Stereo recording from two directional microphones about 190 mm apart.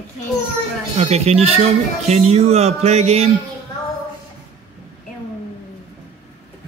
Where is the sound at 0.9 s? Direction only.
30° right (ahead or behind).